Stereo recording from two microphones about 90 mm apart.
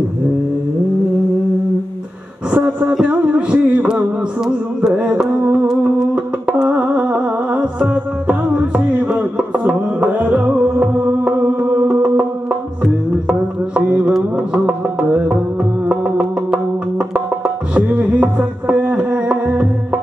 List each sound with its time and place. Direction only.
2.9 s music: 5° right (ahead or behind)
11.4 s music: 20° right (ahead or behind)